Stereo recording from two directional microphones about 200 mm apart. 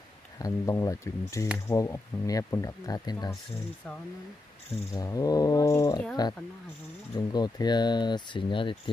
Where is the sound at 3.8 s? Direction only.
5° left (ahead or behind).